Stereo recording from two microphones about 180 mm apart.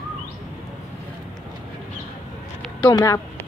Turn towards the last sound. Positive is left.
turn(degrees=20)  # may be behind; listen again after turning